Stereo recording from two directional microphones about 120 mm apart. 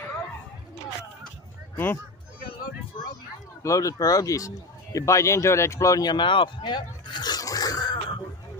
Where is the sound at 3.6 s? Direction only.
30° left (ahead or behind).